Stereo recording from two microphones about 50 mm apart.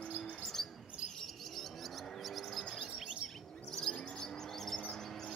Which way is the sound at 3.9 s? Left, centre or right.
Centre.